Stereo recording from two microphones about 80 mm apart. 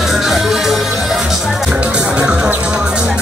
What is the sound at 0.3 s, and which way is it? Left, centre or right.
Music, centre.